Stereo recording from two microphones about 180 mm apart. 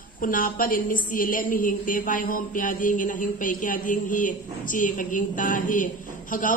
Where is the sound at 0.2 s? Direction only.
50° left (ahead or behind).